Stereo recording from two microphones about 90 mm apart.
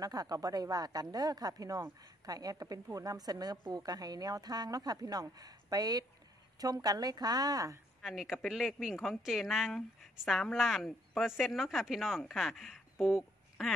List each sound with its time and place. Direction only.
0.0 s speech: 45° right (ahead or behind)
8.0 s speech: centre (ahead or behind)